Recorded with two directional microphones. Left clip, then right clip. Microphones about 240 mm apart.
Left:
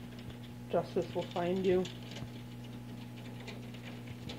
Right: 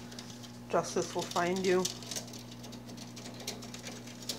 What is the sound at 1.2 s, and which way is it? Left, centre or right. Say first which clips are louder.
Speech: right 1 dB; right.